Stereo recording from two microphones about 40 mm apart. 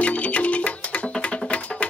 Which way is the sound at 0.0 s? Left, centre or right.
Left.